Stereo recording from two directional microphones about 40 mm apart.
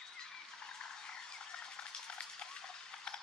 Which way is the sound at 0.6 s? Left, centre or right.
Centre.